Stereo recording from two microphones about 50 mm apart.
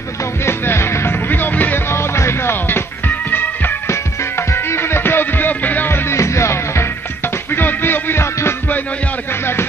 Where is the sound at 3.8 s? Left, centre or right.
Left.